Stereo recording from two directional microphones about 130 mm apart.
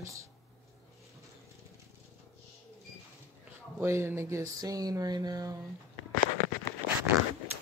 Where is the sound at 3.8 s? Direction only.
20° right (ahead or behind).